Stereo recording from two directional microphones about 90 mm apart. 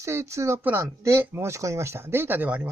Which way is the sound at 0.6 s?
20° right (ahead or behind).